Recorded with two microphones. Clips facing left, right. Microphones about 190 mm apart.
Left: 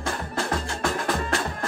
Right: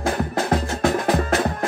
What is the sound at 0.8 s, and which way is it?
Music, 20° right (ahead or behind).